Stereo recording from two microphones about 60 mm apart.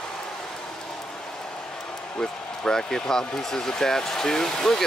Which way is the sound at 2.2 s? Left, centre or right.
Centre.